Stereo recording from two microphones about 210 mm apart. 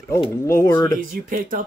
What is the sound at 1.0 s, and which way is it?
Speech, 40° right (ahead or behind).